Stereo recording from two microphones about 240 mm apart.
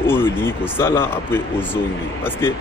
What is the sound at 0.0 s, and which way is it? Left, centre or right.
Speech, centre.